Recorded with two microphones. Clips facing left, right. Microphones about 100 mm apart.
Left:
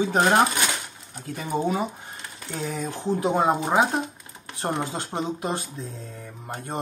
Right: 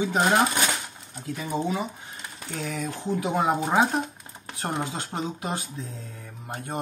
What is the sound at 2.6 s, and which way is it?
Speech, 30° left (ahead or behind).